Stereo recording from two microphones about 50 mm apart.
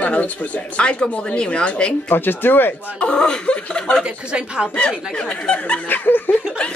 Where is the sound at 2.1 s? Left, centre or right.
Left.